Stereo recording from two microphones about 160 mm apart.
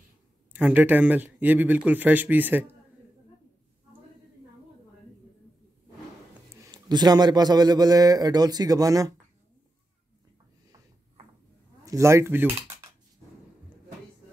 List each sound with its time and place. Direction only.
0.5 s speech: 10° right (ahead or behind)
6.6 s a man's voice: 25° right (ahead or behind)
11.8 s speech: 20° right (ahead or behind)